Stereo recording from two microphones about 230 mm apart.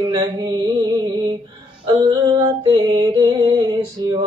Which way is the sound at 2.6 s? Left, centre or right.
Centre.